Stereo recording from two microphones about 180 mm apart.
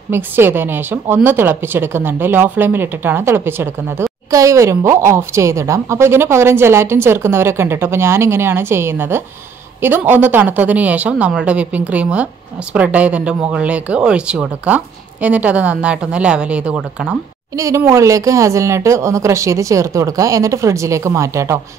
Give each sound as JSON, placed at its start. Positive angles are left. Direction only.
{"t": 0.1, "sound": "a woman's voice", "side_deg": -10}
{"t": 17.6, "sound": "a woman's voice", "side_deg": -15}